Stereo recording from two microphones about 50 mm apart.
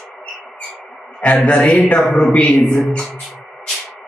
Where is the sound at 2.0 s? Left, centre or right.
Centre.